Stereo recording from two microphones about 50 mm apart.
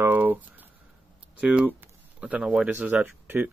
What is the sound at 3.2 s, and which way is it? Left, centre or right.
Speech, right.